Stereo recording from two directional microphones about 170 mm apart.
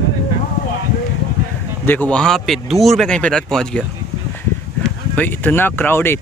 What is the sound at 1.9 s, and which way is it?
Speech, 10° left (ahead or behind).